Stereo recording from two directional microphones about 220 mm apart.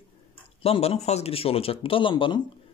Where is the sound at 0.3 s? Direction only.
25° left (ahead or behind).